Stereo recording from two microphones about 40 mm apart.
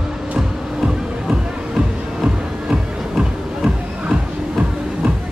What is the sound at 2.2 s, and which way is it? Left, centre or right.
Music, centre.